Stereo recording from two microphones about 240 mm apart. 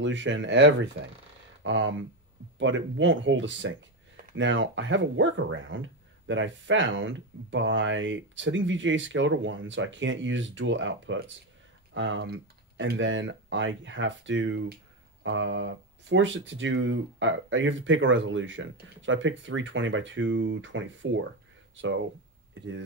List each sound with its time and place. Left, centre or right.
0.0 s speech: right
22.5 s speech: right